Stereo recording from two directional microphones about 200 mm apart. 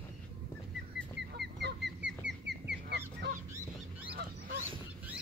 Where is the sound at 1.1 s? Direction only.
55° right (ahead or behind).